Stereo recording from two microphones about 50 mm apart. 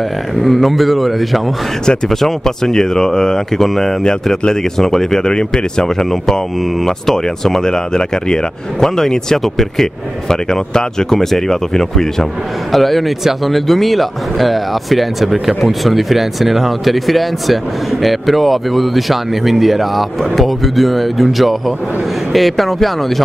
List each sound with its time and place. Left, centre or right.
0.4 s speech: centre